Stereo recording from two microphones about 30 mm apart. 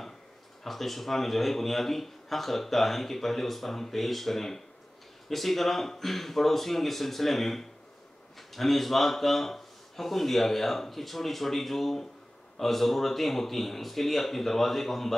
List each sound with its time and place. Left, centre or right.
0.7 s a man's voice: centre